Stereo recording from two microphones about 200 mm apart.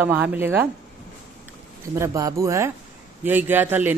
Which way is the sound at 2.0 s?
15° right (ahead or behind).